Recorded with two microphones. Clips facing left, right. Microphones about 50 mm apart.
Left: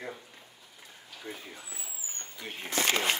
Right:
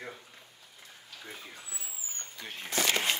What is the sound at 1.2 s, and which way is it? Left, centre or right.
A man's voice, centre.